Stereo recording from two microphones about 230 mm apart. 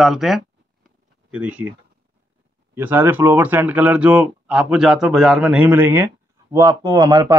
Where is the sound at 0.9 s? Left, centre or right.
Centre.